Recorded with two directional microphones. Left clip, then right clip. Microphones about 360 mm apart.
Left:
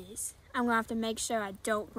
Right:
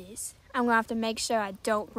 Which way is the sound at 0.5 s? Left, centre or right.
Centre.